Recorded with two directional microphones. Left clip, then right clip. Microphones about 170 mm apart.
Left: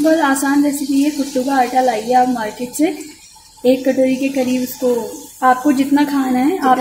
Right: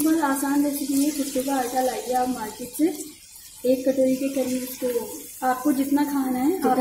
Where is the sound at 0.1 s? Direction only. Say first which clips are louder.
Left 9 dB; 20° left (ahead or behind).